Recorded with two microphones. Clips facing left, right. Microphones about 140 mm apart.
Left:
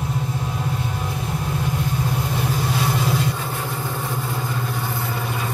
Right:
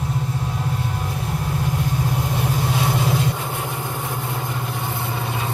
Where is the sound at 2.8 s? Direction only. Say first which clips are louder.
Right 1 dB; 20° right (ahead or behind).